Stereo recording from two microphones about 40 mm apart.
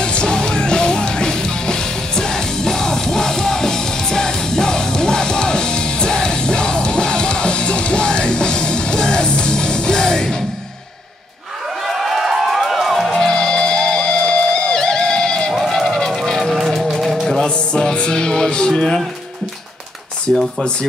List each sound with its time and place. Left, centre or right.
0.0 s music: left
11.8 s music: centre
13.2 s music: left
15.5 s music: centre
16.5 s music: centre
17.7 s music: left
18.7 s music: centre
20.3 s a sound: centre